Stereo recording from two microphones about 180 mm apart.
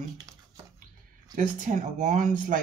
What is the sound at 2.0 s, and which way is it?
Speech, 45° right (ahead or behind).